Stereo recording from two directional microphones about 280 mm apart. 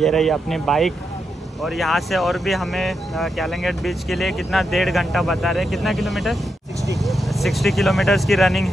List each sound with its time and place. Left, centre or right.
0.0 s speech: centre